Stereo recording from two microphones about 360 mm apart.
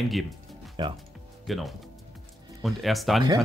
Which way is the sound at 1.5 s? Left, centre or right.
Centre.